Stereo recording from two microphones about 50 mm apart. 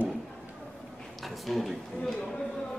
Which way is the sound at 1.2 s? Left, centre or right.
Centre.